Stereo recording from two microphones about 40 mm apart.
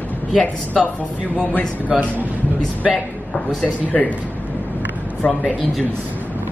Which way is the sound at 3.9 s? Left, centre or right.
Left.